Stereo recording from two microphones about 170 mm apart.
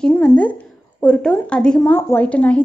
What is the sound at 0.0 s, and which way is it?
Speech, 5° left (ahead or behind).